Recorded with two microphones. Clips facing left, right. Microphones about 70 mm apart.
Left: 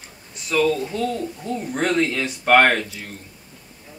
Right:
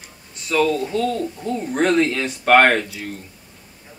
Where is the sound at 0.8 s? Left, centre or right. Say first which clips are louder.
Right 3 dB; centre.